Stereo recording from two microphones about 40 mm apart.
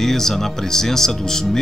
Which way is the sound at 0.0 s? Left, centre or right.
Centre.